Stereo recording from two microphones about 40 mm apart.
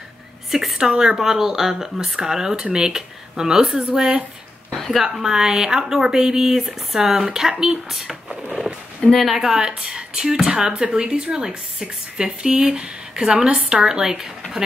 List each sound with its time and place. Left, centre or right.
0.5 s speech: centre
0.8 s speech: centre
4.7 s speech: centre
5.0 s speech: centre
9.1 s a woman's voice: centre
9.4 s speech: centre